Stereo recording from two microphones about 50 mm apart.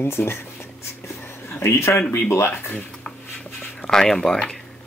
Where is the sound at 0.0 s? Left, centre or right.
Left.